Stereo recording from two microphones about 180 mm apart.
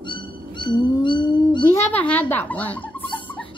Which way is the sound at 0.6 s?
25° left (ahead or behind).